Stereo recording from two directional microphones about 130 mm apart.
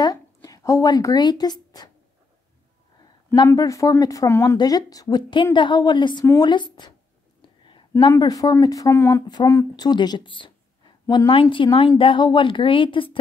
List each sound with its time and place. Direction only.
0.0 s a woman's voice: 30° left (ahead or behind)
3.4 s a woman's voice: 25° left (ahead or behind)
8.2 s a woman's voice: 30° left (ahead or behind)